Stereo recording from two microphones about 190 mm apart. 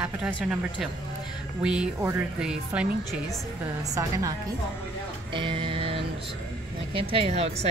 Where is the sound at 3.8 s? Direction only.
15° right (ahead or behind).